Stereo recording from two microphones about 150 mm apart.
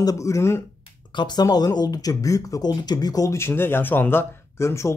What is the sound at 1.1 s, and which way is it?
Speech, 30° left (ahead or behind).